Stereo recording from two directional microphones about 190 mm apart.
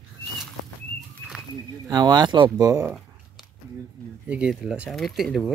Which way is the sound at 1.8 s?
20° right (ahead or behind).